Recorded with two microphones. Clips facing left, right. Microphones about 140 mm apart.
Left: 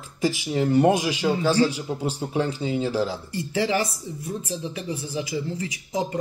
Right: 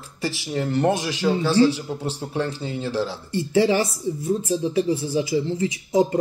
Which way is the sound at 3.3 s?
25° right (ahead or behind).